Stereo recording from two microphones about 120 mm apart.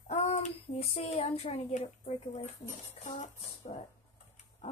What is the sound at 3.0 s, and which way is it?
Music, 80° left.